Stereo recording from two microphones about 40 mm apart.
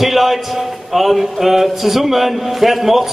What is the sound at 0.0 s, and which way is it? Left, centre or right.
A man's voice, centre.